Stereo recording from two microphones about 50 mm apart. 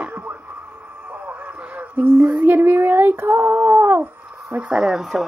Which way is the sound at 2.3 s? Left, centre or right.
Right.